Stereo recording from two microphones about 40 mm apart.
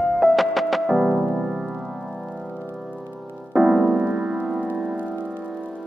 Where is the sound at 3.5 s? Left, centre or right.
Centre.